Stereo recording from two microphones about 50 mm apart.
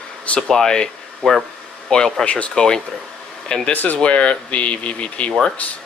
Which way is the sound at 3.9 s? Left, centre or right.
Left.